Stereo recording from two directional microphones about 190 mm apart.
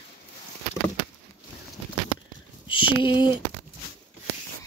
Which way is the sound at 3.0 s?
25° left (ahead or behind).